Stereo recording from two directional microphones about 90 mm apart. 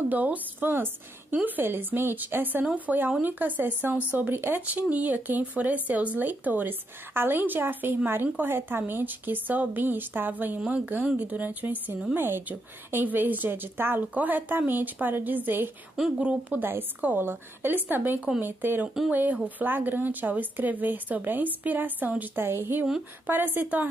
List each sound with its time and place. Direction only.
0.1 s a woman's voice: 20° right (ahead or behind)